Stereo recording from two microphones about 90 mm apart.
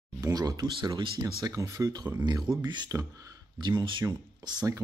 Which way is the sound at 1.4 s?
35° right (ahead or behind).